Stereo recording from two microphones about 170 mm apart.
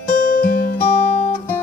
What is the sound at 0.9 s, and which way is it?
Music, 40° left (ahead or behind).